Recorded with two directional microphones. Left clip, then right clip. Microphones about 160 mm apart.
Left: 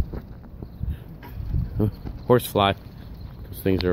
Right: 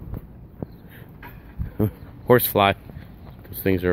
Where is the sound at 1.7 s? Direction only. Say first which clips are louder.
Right 2 dB; 10° right (ahead or behind).